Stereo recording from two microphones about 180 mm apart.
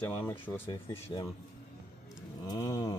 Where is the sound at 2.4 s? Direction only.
20° left (ahead or behind).